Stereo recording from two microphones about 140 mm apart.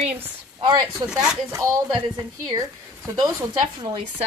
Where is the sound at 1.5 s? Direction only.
20° right (ahead or behind).